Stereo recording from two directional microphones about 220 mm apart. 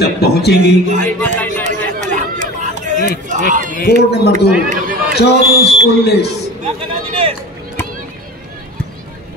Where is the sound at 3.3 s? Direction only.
35° right (ahead or behind).